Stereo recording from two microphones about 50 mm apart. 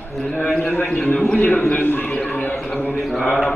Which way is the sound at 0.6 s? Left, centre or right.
Left.